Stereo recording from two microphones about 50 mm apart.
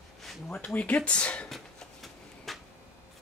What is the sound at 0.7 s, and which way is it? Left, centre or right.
Speech, left.